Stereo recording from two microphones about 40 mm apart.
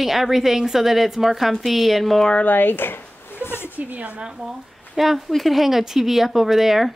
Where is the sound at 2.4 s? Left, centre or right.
Left.